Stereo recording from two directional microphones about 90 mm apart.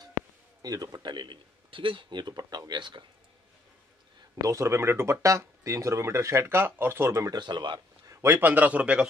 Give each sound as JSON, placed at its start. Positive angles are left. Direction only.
{"t": 0.6, "sound": "speech", "side_deg": -45}
{"t": 1.1, "sound": "a man's voice", "side_deg": -65}
{"t": 4.5, "sound": "speech", "side_deg": -30}
{"t": 7.2, "sound": "a man's voice", "side_deg": -55}
{"t": 8.1, "sound": "a man's voice", "side_deg": -30}